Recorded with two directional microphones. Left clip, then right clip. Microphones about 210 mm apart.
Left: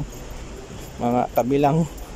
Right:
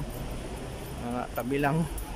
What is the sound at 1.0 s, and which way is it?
Speech, 25° left (ahead or behind).